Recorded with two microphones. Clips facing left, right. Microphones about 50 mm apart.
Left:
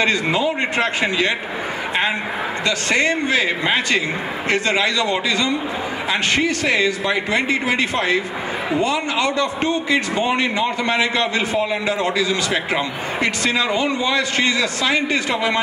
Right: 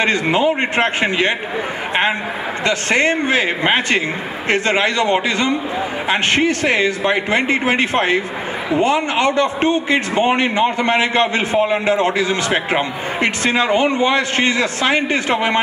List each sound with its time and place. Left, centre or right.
0.0 s a man's voice: right
2.6 s a man's voice: right